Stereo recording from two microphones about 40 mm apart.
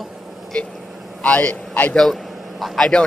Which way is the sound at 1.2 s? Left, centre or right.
Left.